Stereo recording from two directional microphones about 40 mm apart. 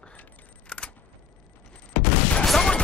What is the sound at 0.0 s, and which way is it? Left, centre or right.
Single-lens reflex camera, left.